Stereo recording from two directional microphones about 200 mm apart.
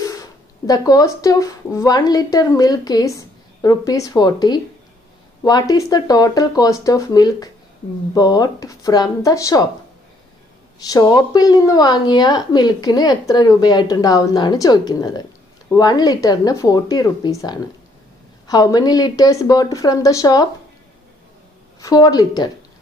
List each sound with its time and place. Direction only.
0.7 s a woman's voice: 20° left (ahead or behind)
10.9 s a woman's voice: 20° left (ahead or behind)
21.8 s a woman's voice: 20° left (ahead or behind)